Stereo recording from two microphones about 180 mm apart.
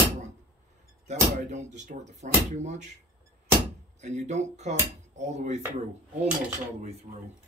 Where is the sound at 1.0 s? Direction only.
40° right (ahead or behind).